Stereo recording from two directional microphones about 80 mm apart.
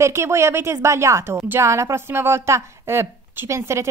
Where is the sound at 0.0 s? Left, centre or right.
Right.